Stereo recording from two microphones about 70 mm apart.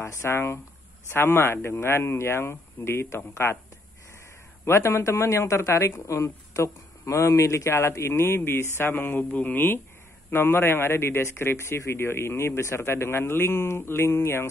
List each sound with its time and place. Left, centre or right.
0.0 s speech: left
4.6 s speech: left